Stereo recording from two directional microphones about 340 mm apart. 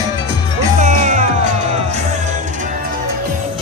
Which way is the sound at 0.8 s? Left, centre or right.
Centre.